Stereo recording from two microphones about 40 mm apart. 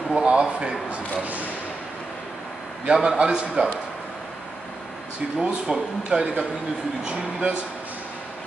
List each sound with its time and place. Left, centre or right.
0.1 s a man's voice: right
2.8 s a man's voice: right
5.4 s a man's voice: centre